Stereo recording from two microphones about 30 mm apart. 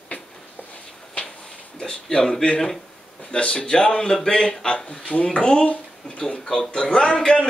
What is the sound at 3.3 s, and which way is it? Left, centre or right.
Speech, left.